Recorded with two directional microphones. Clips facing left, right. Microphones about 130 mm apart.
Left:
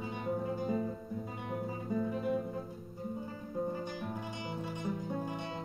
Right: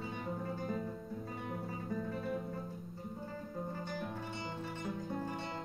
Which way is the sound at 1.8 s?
15° left (ahead or behind).